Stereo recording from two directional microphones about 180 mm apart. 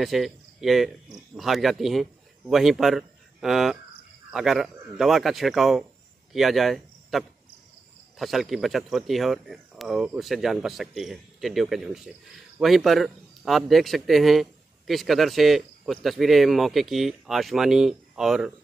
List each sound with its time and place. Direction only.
0.0 s a man's voice: centre (ahead or behind)